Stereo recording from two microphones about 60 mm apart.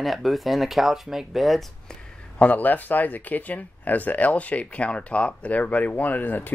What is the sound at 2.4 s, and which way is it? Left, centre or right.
Speech, left.